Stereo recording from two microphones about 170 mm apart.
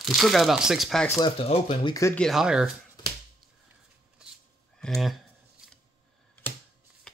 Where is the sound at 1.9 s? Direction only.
15° left (ahead or behind).